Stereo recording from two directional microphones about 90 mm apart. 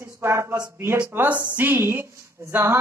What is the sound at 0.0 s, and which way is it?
Speech, 30° right (ahead or behind).